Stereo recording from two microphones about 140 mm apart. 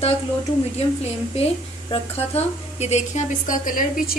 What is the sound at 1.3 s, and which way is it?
Speech, 45° left (ahead or behind).